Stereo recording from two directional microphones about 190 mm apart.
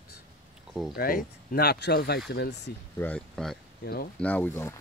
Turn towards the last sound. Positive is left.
turn(degrees=10)  # may be behind; listen again after turning